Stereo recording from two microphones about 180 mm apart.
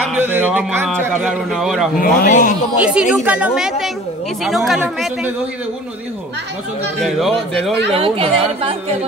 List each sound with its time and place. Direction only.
0.1 s a man's voice: 10° right (ahead or behind)
2.0 s speech: 45° left (ahead or behind)
2.8 s a woman's voice: 5° right (ahead or behind)
7.0 s a woman's voice: centre (ahead or behind)
7.9 s a woman's voice: 30° right (ahead or behind)